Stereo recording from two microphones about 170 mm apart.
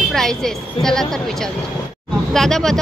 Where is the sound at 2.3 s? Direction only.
Centre (ahead or behind).